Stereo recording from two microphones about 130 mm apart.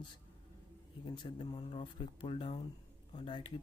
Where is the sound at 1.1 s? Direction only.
35° left (ahead or behind).